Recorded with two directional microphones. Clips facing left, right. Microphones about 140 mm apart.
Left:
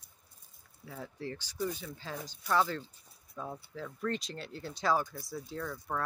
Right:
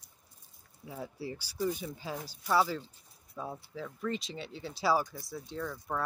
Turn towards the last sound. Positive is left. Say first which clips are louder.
# right 1 dB
turn(degrees=-5)  # may be behind; listen again after turning